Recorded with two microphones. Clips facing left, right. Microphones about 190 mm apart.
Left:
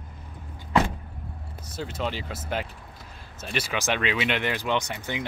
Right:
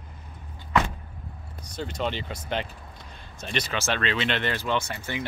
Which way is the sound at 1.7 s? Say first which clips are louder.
Right 1 dB; 5° left (ahead or behind).